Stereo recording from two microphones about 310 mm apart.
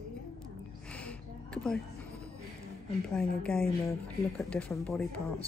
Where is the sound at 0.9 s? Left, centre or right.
Centre.